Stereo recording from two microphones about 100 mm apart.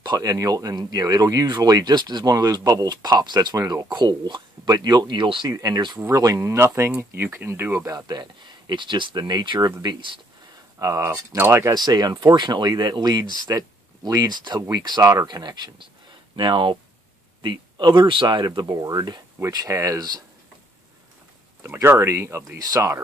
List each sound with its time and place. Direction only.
0.0 s speech: 40° right (ahead or behind)
5.5 s speech: 35° right (ahead or behind)
7.9 s speech: 45° right (ahead or behind)
11.1 s speech: 20° right (ahead or behind)
11.7 s speech: 45° right (ahead or behind)
18.7 s speech: 40° right (ahead or behind)
19.4 s speech: 30° right (ahead or behind)
21.8 s speech: 30° right (ahead or behind)